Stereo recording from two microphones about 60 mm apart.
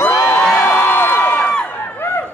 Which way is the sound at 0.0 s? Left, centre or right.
Left.